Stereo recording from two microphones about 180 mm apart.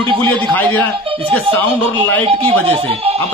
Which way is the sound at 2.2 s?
35° right (ahead or behind).